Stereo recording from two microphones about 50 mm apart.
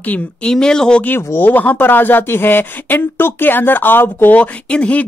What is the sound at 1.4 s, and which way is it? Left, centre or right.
Speech, left.